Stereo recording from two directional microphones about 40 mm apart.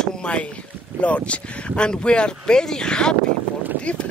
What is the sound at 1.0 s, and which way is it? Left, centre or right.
Speech, left.